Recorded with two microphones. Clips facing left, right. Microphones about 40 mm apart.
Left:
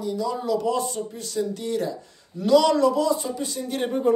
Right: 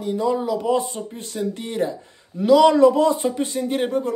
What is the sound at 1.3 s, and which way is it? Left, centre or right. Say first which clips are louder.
Speech: right 1 dB; right.